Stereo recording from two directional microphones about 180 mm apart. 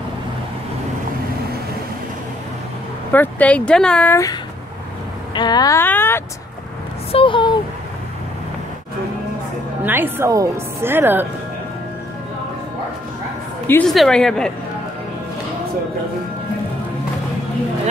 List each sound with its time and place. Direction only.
3.1 s speech: 10° left (ahead or behind)
7.1 s a sound: 30° left (ahead or behind)
9.8 s a woman's voice: 10° right (ahead or behind)
13.7 s a woman's voice: 5° left (ahead or behind)